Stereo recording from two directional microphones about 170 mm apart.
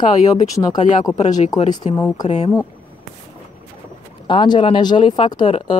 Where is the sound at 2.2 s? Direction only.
35° left (ahead or behind).